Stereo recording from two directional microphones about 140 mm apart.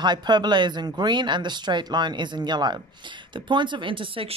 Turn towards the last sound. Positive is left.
turn(degrees=-40)  # may be behind; listen again after turning